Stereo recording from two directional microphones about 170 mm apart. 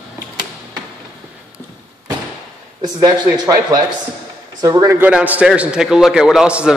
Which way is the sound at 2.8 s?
25° right (ahead or behind).